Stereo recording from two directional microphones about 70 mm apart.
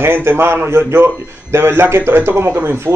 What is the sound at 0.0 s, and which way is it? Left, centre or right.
A man's voice, right.